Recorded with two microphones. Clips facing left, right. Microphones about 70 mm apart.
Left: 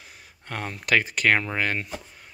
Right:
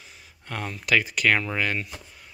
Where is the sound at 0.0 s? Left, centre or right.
Left.